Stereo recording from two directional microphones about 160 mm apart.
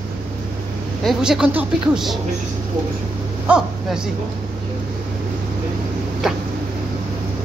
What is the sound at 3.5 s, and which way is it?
Speech, 10° right (ahead or behind).